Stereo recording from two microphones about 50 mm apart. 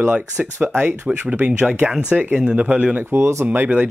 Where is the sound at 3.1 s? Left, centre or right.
Right.